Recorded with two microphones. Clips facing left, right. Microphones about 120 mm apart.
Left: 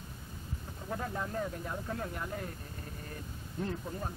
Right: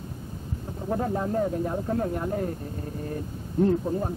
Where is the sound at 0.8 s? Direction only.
35° right (ahead or behind).